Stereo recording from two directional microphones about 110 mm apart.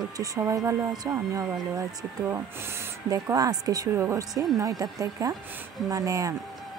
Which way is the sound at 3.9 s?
25° right (ahead or behind).